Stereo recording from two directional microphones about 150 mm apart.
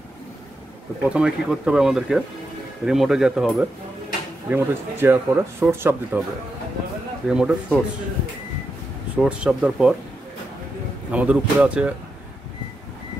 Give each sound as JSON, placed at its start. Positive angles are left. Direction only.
{"t": 1.1, "sound": "speech", "side_deg": -5}
{"t": 4.5, "sound": "speech", "side_deg": -15}
{"t": 7.2, "sound": "speech", "side_deg": -5}
{"t": 9.1, "sound": "speech", "side_deg": -5}
{"t": 11.1, "sound": "speech", "side_deg": -10}